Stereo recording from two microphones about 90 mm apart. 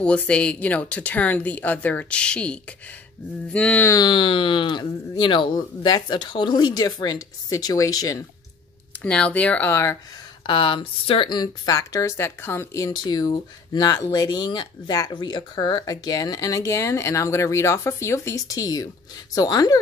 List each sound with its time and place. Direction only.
0.0 s speech: 15° left (ahead or behind)
4.1 s speech: 70° left (ahead or behind); by 8.2 s 40° left (ahead or behind)
9.0 s speech: 15° left (ahead or behind)
10.4 s speech: 65° left (ahead or behind)
11.7 s a woman's voice: 40° left (ahead or behind)
12.9 s speech: 50° left (ahead or behind)